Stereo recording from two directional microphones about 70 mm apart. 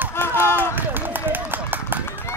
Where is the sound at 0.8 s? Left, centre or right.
Right.